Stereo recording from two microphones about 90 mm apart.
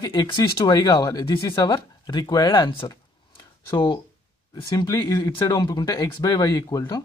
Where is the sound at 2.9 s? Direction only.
55° left (ahead or behind).